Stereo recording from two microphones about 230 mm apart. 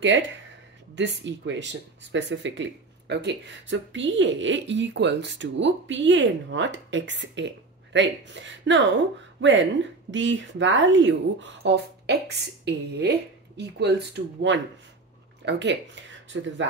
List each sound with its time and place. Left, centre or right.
0.9 s speech: right